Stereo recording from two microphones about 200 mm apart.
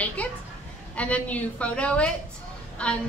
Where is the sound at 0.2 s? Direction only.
5° left (ahead or behind).